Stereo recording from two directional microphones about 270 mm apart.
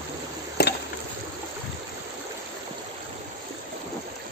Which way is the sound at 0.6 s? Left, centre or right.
Left.